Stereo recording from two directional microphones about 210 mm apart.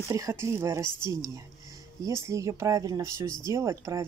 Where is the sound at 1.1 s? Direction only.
15° right (ahead or behind).